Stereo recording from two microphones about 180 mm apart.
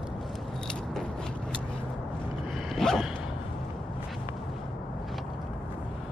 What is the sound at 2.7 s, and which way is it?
Zipper, centre (ahead or behind).